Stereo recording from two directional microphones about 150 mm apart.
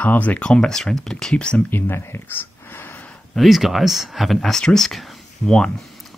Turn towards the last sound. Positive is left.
turn(degrees=0)  # may be behind; listen again after turning